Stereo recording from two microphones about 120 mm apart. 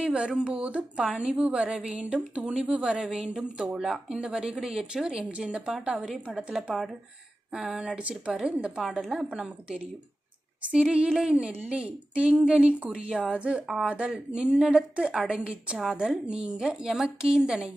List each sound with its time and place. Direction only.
0.0 s a woman's voice: 10° right (ahead or behind)